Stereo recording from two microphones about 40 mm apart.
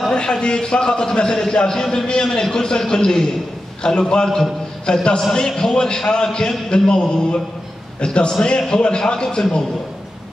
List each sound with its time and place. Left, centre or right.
0.1 s a man's voice: left